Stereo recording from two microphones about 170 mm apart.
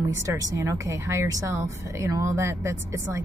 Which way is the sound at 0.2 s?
20° right (ahead or behind).